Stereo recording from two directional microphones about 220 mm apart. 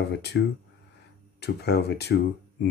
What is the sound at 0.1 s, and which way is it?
Speech, 50° left (ahead or behind).